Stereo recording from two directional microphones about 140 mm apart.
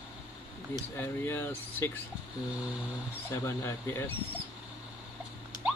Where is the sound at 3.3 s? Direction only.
20° left (ahead or behind).